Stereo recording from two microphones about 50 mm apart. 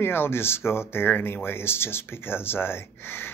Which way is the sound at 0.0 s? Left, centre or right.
Left.